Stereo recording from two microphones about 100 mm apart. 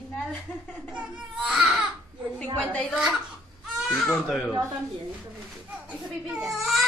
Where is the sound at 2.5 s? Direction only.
10° left (ahead or behind).